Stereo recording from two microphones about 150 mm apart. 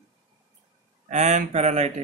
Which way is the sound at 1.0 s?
50° right (ahead or behind).